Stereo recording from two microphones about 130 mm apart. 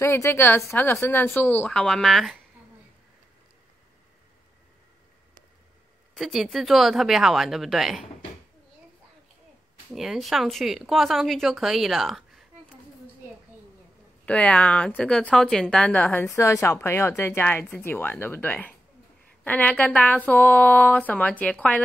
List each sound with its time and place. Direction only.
0.0 s a woman's voice: 20° left (ahead or behind); by 2.4 s centre (ahead or behind)
6.1 s speech: centre (ahead or behind)
9.8 s speech: 5° right (ahead or behind)
14.2 s a woman's voice: 10° left (ahead or behind)